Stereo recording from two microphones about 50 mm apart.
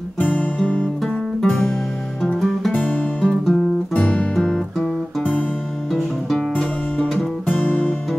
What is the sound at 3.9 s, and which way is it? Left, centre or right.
Music, left.